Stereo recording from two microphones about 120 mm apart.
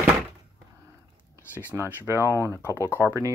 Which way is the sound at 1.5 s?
15° right (ahead or behind).